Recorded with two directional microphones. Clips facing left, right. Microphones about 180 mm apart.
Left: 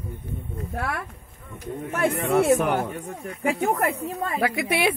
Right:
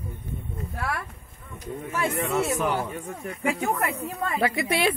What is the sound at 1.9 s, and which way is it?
Speech, 60° left (ahead or behind).